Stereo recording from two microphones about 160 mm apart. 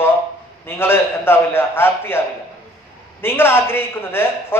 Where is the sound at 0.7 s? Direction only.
15° left (ahead or behind).